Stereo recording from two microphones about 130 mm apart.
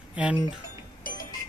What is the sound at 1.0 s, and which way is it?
Music, 90° left.